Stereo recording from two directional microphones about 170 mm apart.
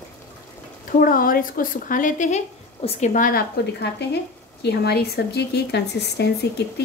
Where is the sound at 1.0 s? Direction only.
55° left (ahead or behind); by 3.0 s 40° left (ahead or behind).